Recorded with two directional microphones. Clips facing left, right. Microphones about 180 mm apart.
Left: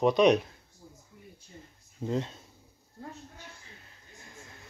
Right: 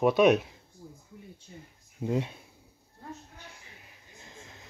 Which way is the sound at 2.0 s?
10° right (ahead or behind).